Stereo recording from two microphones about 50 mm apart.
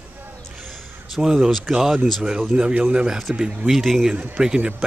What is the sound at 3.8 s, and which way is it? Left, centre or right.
Speech, centre.